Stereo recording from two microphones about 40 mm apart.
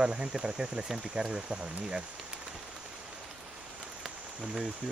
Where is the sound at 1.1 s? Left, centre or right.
Right.